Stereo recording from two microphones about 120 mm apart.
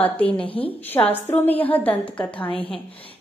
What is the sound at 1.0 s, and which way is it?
A woman's voice, 15° left (ahead or behind).